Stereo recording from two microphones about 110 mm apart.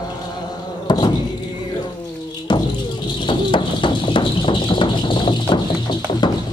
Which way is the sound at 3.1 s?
45° left (ahead or behind).